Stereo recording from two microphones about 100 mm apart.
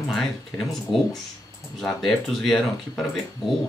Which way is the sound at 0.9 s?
60° left (ahead or behind).